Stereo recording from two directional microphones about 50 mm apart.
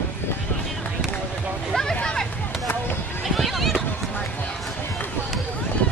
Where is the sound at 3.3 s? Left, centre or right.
Centre.